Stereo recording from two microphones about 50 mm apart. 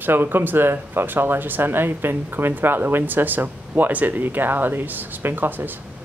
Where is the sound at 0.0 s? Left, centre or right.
Right.